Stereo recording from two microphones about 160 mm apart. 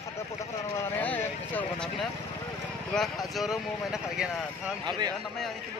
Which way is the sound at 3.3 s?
Centre (ahead or behind).